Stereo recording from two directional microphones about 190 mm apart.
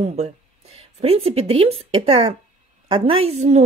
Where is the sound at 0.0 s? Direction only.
35° right (ahead or behind).